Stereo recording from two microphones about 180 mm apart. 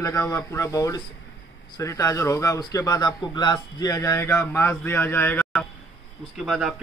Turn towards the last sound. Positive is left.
turn(degrees=0)  # may be behind; listen again after turning